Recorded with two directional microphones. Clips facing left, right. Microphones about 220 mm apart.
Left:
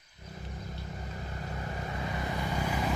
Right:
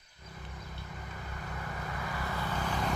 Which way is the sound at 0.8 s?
30° left (ahead or behind).